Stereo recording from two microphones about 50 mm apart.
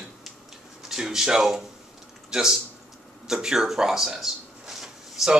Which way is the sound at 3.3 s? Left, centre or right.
Centre.